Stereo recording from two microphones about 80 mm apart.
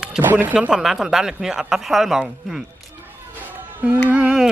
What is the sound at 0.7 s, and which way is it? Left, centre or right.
Speech, centre.